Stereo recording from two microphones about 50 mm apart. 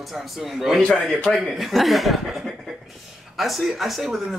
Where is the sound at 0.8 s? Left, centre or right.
Centre.